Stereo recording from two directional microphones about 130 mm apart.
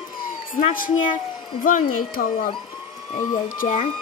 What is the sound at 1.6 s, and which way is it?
Speech, 90° left.